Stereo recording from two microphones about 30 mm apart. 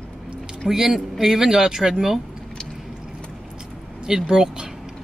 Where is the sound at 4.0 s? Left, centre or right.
Right.